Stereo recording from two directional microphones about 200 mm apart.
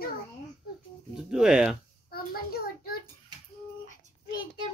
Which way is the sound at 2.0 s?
50° left (ahead or behind).